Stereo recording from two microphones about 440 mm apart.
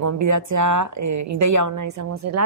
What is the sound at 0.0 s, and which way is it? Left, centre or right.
Speech, right.